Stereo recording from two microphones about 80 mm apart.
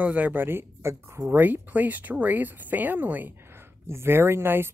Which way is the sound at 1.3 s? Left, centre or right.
Right.